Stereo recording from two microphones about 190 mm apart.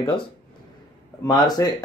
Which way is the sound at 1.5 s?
20° left (ahead or behind).